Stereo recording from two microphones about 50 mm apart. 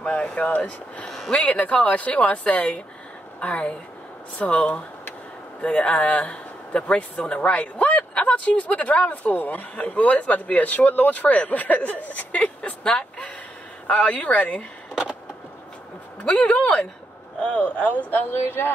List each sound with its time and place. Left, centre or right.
0.0 s a man's voice: centre
1.0 s speech: centre
1.4 s a man's voice: left
14.0 s a man's voice: left
16.3 s a man's voice: left
18.2 s a woman's voice: left